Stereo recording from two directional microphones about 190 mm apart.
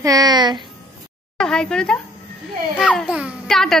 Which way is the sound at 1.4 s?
5° left (ahead or behind).